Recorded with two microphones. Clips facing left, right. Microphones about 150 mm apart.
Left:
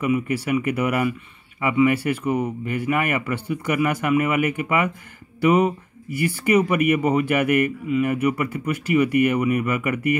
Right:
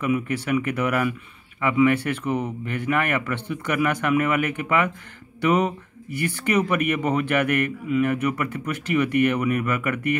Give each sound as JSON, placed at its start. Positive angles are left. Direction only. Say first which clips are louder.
{"t": 0.0, "sound": "speech", "louder": "left 2 dB", "side_deg": 10}